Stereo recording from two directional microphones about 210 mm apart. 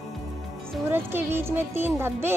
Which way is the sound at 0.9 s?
10° right (ahead or behind).